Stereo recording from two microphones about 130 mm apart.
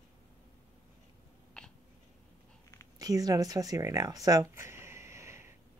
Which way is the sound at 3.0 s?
25° right (ahead or behind).